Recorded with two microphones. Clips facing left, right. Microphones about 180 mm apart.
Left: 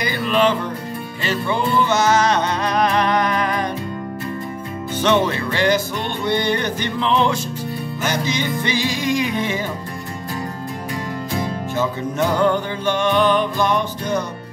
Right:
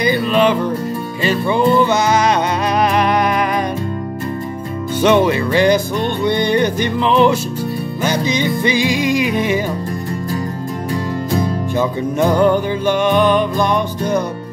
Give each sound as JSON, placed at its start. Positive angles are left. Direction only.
{"t": 0.0, "sound": "music", "side_deg": -15}
{"t": 5.0, "sound": "music", "side_deg": -10}
{"t": 11.8, "sound": "music", "side_deg": -15}